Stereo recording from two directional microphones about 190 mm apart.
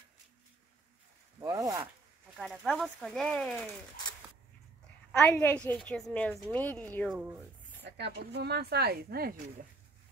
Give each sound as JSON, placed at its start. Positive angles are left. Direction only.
{"t": 1.4, "sound": "zipper", "side_deg": -15}
{"t": 2.3, "sound": "speech", "side_deg": 0}
{"t": 5.1, "sound": "a woman's voice", "side_deg": 10}
{"t": 7.8, "sound": "speech", "side_deg": -60}